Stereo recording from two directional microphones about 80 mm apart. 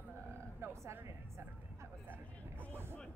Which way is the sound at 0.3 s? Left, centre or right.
Right.